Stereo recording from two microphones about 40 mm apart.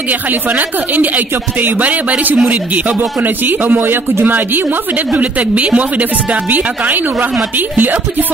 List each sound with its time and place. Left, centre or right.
0.1 s speech: right
5.1 s speech: right